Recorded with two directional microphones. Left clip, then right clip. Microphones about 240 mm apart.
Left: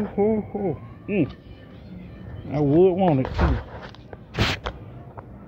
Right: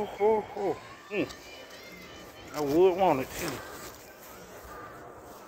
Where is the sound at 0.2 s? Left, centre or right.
Centre.